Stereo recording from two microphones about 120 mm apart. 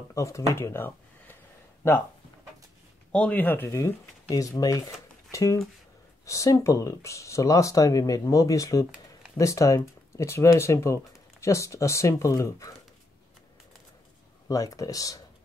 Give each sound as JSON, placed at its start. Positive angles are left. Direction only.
{"t": 0.1, "sound": "speech", "side_deg": 25}
{"t": 3.1, "sound": "speech", "side_deg": 10}
{"t": 14.5, "sound": "speech", "side_deg": 30}